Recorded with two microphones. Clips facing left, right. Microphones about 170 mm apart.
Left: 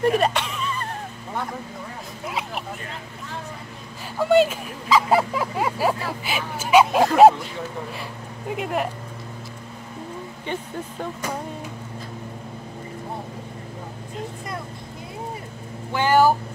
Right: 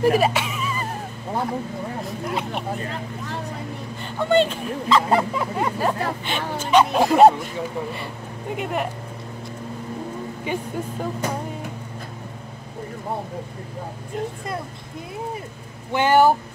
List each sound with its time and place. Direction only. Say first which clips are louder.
0.0 s a sound: right 2 dB; 5° right (ahead or behind)
2.0 s speech: right 4 dB; centre (ahead or behind)
4.2 s speech: left 1 dB; 5° left (ahead or behind)
10.4 s speech: right 3 dB; 10° right (ahead or behind)
15.9 s speech: right 1 dB; 20° right (ahead or behind)